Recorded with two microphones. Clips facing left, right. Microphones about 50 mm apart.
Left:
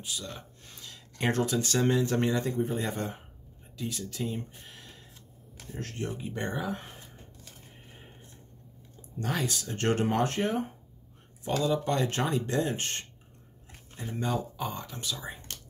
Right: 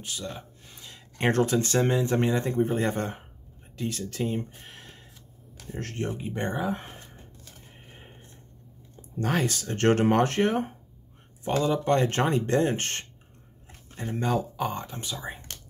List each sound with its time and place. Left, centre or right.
0.3 s speech: centre
0.8 s a sound: right
1.2 s speech: right
1.7 s speech: right
2.4 s speech: right
4.6 s a sound: right
5.8 s speech: right
6.0 s speech: right
9.2 s speech: right
11.4 s speech: right
14.9 s speech: right